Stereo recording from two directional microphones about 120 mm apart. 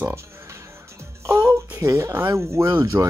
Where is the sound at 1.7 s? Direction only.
25° right (ahead or behind).